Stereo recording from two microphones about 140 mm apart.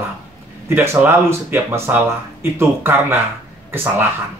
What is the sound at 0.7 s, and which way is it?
Speech, 15° right (ahead or behind).